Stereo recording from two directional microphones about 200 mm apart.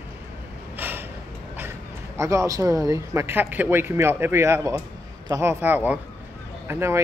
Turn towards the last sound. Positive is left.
turn(degrees=-10)  # may be behind; listen again after turning